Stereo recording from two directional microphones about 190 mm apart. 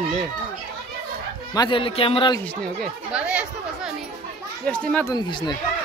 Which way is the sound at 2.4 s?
5° left (ahead or behind).